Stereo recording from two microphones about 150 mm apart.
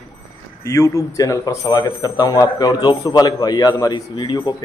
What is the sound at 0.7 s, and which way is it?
Speech, 20° left (ahead or behind).